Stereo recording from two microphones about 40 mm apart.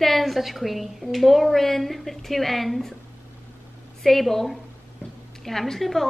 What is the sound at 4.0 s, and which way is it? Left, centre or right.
A woman's voice, centre.